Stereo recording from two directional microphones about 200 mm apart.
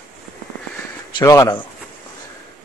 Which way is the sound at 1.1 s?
15° left (ahead or behind).